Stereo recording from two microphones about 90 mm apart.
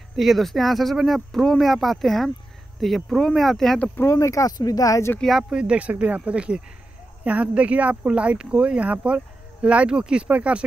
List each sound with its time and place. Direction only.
0.1 s speech: centre (ahead or behind)
3.9 s speech: 30° left (ahead or behind)
5.2 s speech: 5° right (ahead or behind)